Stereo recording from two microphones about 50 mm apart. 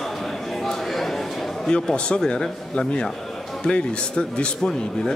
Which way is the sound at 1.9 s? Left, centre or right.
Left.